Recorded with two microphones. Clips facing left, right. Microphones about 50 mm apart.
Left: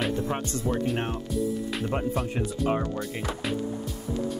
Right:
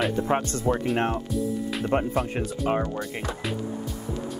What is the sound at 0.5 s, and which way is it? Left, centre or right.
Speech, right.